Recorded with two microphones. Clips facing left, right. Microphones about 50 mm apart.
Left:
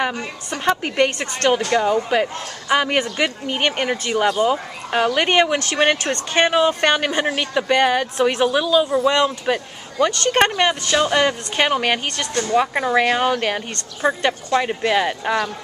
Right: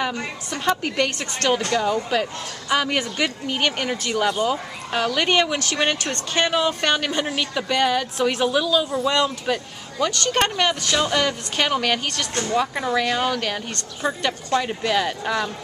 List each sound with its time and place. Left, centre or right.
0.0 s speech: left